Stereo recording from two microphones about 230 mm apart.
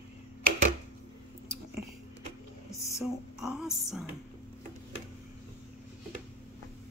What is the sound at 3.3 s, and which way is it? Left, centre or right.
Speech, centre.